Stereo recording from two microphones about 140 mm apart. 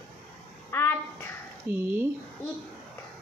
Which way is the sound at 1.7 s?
15° right (ahead or behind).